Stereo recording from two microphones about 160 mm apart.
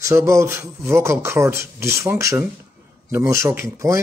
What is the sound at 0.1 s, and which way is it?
Speech, 20° right (ahead or behind).